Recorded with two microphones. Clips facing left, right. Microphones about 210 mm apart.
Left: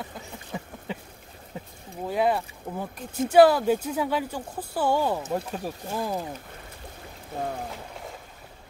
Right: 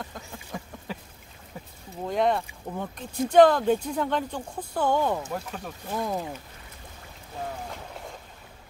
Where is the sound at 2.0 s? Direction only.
5° left (ahead or behind).